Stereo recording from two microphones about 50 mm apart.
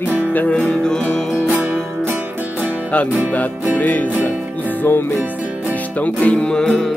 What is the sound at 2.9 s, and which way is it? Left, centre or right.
Music, left.